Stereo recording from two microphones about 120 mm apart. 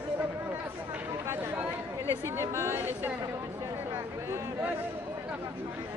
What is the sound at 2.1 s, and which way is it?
A woman's voice, 20° right (ahead or behind).